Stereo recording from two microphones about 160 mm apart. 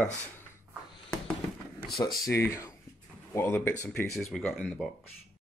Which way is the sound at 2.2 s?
15° left (ahead or behind).